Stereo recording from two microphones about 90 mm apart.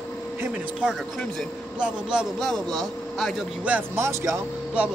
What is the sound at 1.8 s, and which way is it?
Speech, 10° right (ahead or behind).